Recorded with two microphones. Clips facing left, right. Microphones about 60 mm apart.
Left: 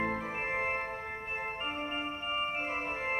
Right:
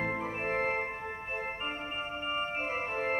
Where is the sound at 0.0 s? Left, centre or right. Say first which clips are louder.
Right 1 dB; centre.